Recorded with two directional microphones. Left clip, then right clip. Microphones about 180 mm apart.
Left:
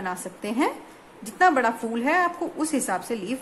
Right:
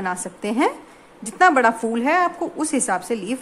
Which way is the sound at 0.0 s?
25° right (ahead or behind).